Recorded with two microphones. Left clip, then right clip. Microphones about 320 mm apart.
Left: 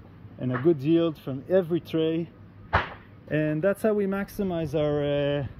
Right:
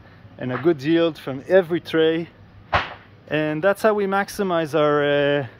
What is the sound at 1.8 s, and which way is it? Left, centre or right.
Speech, centre.